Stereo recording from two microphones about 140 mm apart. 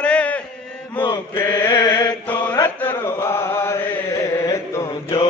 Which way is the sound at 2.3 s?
10° left (ahead or behind).